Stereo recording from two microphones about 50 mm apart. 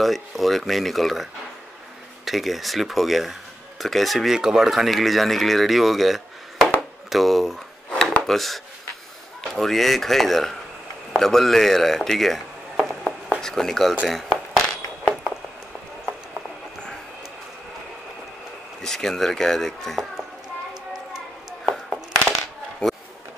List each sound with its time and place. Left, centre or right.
0.0 s speech: centre
4.3 s speech: centre
7.9 s a sound: left
8.2 s speech: centre
18.8 s speech: centre
21.6 s a sound: centre